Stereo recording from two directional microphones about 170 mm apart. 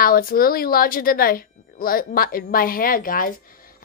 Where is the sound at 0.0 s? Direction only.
60° left (ahead or behind).